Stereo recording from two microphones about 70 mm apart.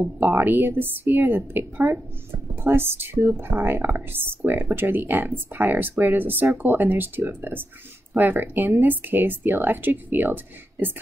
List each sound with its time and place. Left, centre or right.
0.2 s speech: right